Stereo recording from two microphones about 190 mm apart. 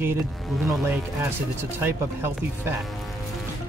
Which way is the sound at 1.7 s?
10° right (ahead or behind).